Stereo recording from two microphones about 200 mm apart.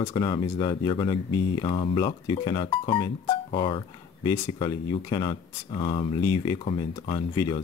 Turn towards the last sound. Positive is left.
turn(degrees=20)  # may be behind; listen again after turning